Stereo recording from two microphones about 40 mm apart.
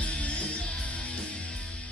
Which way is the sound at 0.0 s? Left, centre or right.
Left.